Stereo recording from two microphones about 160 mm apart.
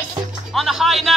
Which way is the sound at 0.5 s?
Centre (ahead or behind).